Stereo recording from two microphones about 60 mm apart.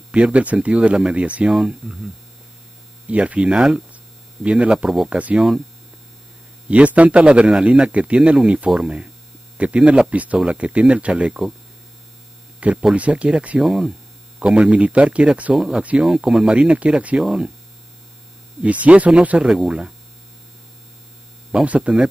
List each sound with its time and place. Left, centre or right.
0.1 s speech: centre
3.1 s speech: right
4.8 s speech: centre
5.1 s speech: centre
6.7 s speech: right
12.9 s speech: right
13.6 s speech: centre
15.5 s speech: centre
18.6 s speech: right
21.6 s speech: right